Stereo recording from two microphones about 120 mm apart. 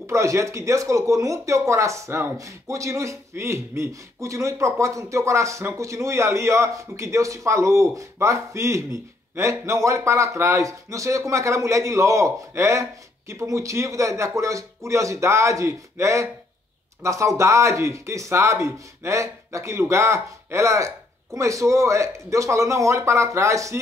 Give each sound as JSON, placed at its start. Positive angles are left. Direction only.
{"t": 0.0, "sound": "speech", "side_deg": -25}